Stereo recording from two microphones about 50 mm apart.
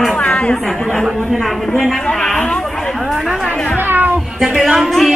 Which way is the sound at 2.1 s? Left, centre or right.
Centre.